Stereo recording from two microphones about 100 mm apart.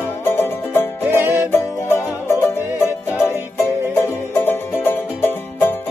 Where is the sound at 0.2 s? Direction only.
25° left (ahead or behind).